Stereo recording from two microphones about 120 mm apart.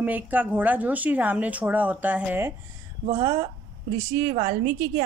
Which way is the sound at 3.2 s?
40° right (ahead or behind).